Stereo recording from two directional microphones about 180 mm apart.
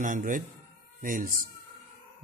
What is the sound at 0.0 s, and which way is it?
Speech, 45° right (ahead or behind).